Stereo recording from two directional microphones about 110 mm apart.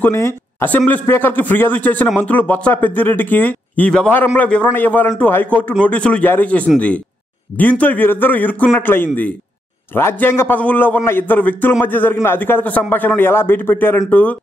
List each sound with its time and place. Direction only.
0.0 s speech: 25° left (ahead or behind)